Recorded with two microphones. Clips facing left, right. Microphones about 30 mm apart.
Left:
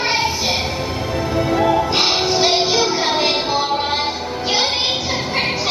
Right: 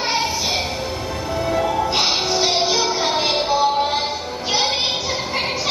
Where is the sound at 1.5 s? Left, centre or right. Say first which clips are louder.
Left 3 dB; centre.